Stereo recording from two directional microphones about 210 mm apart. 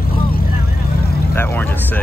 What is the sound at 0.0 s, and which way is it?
Vehicle, 45° left (ahead or behind).